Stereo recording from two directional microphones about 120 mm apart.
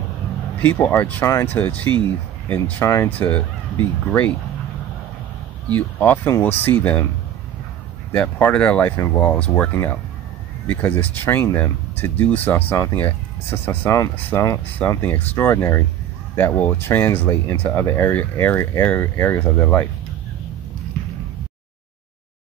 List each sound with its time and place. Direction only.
0.6 s speech: 15° left (ahead or behind)
5.8 s speech: 15° left (ahead or behind)
8.1 s speech: 15° left (ahead or behind)
15.0 s speech: 15° left (ahead or behind)